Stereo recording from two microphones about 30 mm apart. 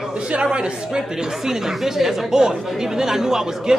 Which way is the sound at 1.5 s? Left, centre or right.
Centre.